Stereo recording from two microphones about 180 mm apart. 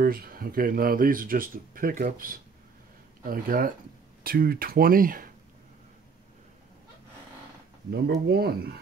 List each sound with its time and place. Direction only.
0.0 s speech: 55° right (ahead or behind)
7.9 s speech: 60° right (ahead or behind)